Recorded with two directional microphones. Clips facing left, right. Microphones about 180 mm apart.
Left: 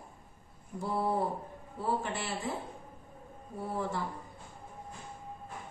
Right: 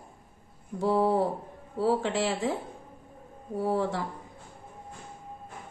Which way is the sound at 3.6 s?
90° right.